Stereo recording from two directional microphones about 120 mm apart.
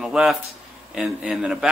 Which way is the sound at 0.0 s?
5° right (ahead or behind).